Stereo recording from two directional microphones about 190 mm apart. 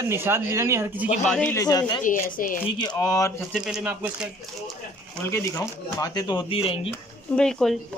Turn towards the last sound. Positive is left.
turn(degrees=5)  # may be behind; listen again after turning